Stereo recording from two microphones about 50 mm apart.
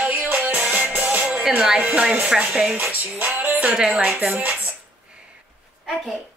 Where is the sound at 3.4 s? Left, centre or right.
Right.